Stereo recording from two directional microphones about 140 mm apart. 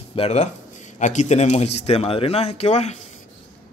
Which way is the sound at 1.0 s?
60° left (ahead or behind).